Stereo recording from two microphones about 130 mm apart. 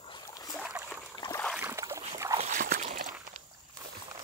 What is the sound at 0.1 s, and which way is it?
Boat, 30° left (ahead or behind).